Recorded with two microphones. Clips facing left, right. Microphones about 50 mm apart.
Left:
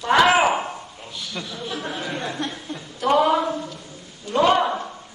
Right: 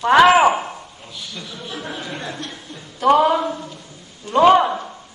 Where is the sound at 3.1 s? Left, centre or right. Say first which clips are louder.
Even; centre.